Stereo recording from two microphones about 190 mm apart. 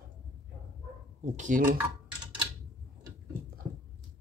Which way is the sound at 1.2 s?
40° right (ahead or behind).